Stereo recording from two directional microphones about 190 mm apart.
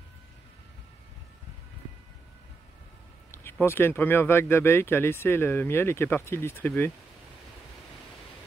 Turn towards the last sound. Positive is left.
turn(degrees=10)  # may be behind; listen again after turning